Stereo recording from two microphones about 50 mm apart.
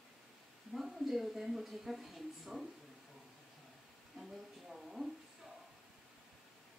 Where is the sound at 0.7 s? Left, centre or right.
Centre.